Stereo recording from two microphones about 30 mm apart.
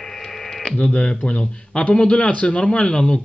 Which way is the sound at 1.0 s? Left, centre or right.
Left.